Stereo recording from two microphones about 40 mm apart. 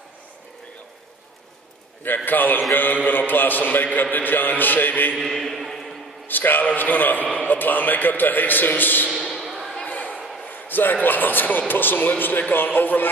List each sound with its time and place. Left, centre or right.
2.0 s a man's voice: left
5.2 s mantra: centre
6.2 s a man's voice: left
9.4 s a sound: centre
9.8 s a sound: left
10.4 s a man's voice: left